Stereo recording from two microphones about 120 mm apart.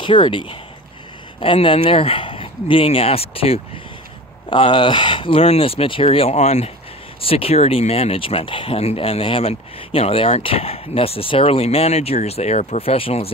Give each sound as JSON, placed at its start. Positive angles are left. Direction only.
{"t": 0.0, "sound": "speech", "side_deg": 45}
{"t": 7.2, "sound": "speech", "side_deg": 50}